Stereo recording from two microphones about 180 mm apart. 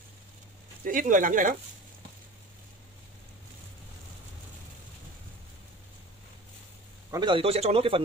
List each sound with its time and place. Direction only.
0.8 s speech: 50° right (ahead or behind)
7.1 s speech: 25° right (ahead or behind)